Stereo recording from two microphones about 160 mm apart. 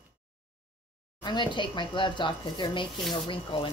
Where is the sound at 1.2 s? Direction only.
30° left (ahead or behind).